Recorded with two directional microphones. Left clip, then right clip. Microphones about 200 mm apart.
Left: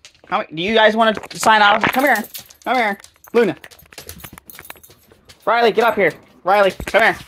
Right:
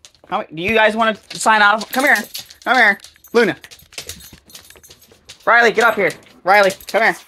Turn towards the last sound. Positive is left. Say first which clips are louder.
# left 1 dB
turn(degrees=-15)  # may be behind; listen again after turning